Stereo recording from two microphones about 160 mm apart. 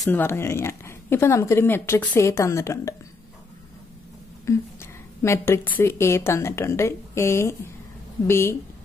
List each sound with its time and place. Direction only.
0.1 s a woman's voice: 15° left (ahead or behind)
4.5 s a woman's voice: 15° left (ahead or behind)